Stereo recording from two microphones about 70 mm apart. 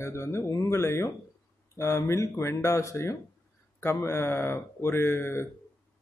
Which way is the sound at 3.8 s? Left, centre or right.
Left.